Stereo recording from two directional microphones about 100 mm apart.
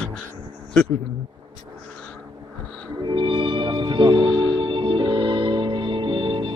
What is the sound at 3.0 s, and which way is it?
Music, 55° right (ahead or behind).